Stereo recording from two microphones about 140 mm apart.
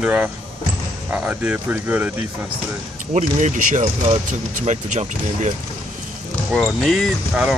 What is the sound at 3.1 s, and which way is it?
Speech, 60° right (ahead or behind).